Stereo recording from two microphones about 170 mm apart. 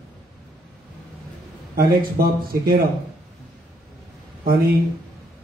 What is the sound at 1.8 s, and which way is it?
Speech, 60° right (ahead or behind).